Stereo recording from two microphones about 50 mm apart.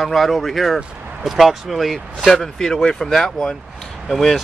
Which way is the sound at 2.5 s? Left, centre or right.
Centre.